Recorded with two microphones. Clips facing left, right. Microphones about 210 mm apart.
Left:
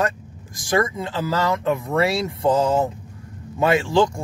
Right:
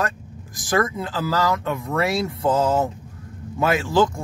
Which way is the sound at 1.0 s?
25° left (ahead or behind).